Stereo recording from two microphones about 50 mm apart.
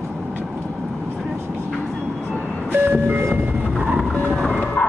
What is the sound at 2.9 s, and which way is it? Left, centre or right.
Vehicle, right.